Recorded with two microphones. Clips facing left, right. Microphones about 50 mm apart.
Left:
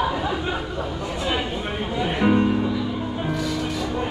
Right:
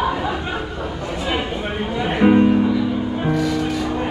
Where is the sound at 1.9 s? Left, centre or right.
Centre.